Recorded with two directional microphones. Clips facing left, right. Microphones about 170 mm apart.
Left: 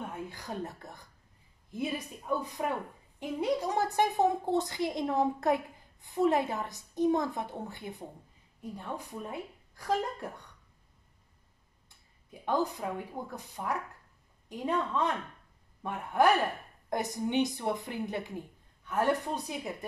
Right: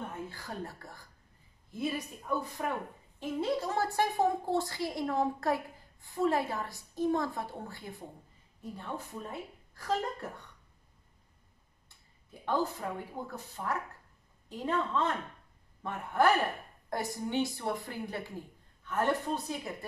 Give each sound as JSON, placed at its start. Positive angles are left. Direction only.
{"t": 0.3, "sound": "a woman's voice", "side_deg": 20}
{"t": 12.4, "sound": "a woman's voice", "side_deg": 15}